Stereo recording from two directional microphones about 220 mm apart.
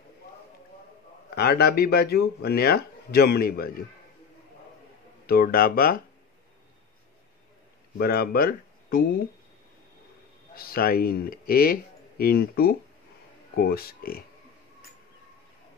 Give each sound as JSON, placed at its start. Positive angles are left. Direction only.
{"t": 1.3, "sound": "speech", "side_deg": 45}
{"t": 5.2, "sound": "speech", "side_deg": 40}
{"t": 8.0, "sound": "speech", "side_deg": 45}
{"t": 10.5, "sound": "speech", "side_deg": 40}